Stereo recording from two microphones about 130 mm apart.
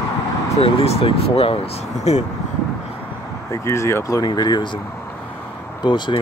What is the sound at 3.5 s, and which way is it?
Speech, 20° left (ahead or behind).